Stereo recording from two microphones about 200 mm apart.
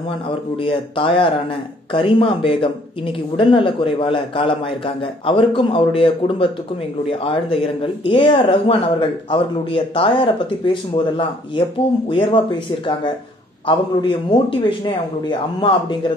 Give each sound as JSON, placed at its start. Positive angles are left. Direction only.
{"t": 0.3, "sound": "a man's voice", "side_deg": 25}